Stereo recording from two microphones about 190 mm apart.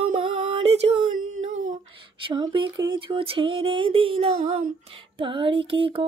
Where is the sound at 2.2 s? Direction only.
25° right (ahead or behind).